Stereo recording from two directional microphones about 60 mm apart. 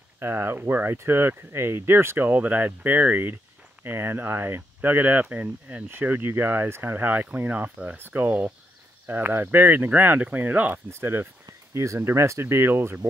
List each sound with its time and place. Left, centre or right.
0.2 s speech: right
0.6 s speech: right
10.9 s speech: right
11.7 s speech: right